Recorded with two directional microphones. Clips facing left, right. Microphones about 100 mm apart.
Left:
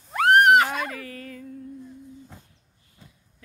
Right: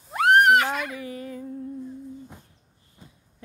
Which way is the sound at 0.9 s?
20° right (ahead or behind).